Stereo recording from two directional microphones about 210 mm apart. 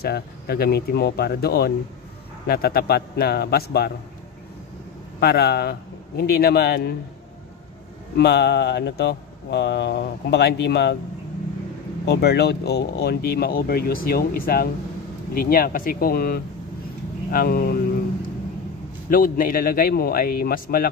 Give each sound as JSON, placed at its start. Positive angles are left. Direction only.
{"t": 0.0, "sound": "speech", "side_deg": 50}
{"t": 5.2, "sound": "speech", "side_deg": 50}
{"t": 8.2, "sound": "speech", "side_deg": 50}
{"t": 12.1, "sound": "speech", "side_deg": 50}
{"t": 19.0, "sound": "speech", "side_deg": 40}